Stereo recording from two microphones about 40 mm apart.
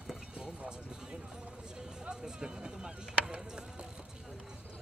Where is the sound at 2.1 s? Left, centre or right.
Centre.